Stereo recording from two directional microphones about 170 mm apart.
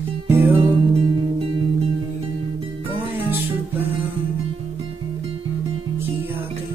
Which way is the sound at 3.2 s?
10° right (ahead or behind).